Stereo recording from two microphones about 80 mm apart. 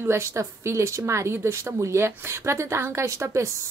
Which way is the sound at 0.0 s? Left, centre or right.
Right.